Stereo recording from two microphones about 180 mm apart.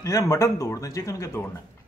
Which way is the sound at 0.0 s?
20° left (ahead or behind).